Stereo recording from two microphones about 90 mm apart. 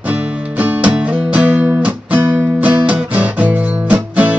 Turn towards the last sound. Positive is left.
turn(degrees=-15)  # may be behind; listen again after turning